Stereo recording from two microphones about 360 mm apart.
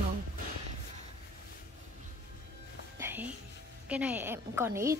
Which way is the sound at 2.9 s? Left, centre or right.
Centre.